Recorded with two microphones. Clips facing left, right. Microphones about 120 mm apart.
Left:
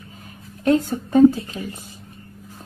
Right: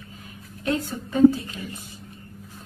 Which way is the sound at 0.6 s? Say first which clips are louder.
Left 8 dB; 50° left (ahead or behind).